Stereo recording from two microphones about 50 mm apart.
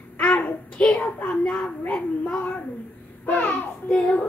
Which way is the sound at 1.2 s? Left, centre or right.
Left.